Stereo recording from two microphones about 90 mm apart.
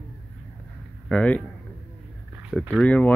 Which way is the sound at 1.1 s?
15° left (ahead or behind).